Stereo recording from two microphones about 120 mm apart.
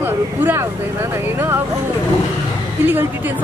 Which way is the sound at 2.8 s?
15° right (ahead or behind).